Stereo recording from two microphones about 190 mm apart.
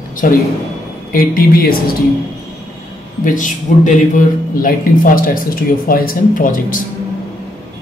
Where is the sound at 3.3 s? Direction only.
40° left (ahead or behind).